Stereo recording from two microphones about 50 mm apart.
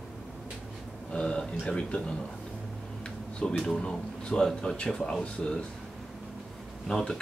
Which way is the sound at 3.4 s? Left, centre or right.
Centre.